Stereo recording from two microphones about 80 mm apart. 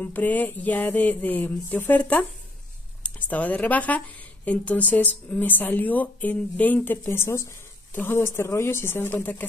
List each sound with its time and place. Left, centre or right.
0.0 s speech: left